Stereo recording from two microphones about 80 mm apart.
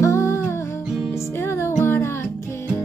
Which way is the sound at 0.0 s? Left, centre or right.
Left.